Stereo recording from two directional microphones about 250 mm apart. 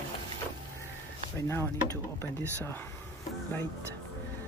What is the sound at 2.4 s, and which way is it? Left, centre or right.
Speech, centre.